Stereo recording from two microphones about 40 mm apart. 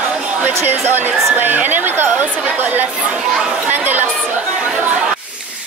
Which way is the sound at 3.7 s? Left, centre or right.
Right.